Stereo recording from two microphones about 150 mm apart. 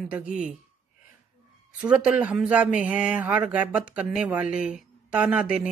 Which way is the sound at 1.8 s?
5° right (ahead or behind).